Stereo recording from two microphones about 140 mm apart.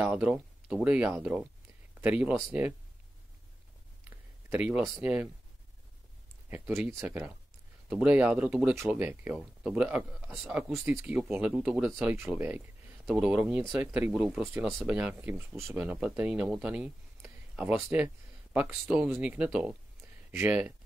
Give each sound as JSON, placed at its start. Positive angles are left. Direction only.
{"t": 0.1, "sound": "speech", "side_deg": -5}
{"t": 4.5, "sound": "speech", "side_deg": -10}
{"t": 6.5, "sound": "a man's voice", "side_deg": -20}